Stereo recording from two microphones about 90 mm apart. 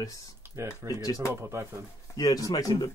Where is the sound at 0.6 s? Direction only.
30° right (ahead or behind).